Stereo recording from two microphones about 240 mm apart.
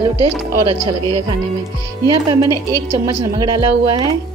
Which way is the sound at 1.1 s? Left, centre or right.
Right.